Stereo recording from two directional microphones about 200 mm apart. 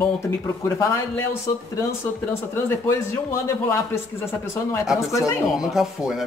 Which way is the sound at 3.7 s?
15° left (ahead or behind).